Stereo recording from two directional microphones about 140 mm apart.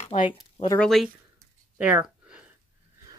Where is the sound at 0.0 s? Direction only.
55° left (ahead or behind).